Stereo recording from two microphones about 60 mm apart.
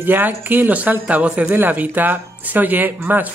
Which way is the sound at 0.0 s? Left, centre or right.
Right.